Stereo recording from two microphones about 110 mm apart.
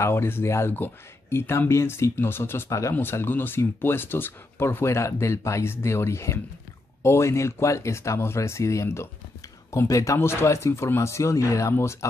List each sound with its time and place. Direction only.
0.0 s speech: 20° left (ahead or behind)